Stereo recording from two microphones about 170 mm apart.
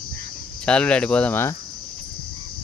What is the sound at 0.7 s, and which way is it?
Speech, 5° left (ahead or behind).